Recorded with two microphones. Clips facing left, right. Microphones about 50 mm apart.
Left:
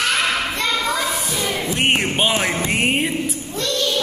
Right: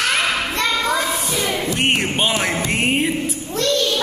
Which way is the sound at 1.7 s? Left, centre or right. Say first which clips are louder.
Left 2 dB; centre.